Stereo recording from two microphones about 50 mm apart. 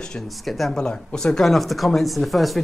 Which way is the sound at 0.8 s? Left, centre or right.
Centre.